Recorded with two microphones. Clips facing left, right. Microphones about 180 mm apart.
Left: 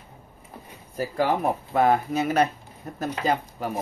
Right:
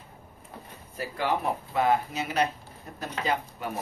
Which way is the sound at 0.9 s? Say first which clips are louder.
Left 5 dB; 45° left (ahead or behind).